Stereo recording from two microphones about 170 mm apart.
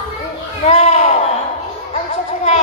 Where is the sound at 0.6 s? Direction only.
40° left (ahead or behind).